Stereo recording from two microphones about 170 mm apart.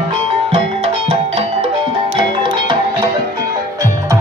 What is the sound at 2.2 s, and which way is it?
Music, 30° right (ahead or behind).